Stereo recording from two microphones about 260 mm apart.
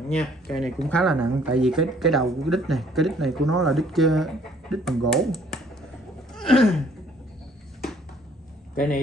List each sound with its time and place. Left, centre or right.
0.2 s speech: centre
6.3 s a sound: centre
8.7 s a man's voice: left